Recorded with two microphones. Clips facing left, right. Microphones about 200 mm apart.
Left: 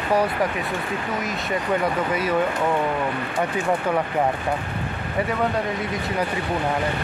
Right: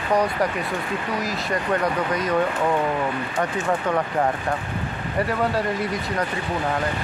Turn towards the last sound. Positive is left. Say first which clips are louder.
# even
turn(degrees=0)  # may be behind; listen again after turning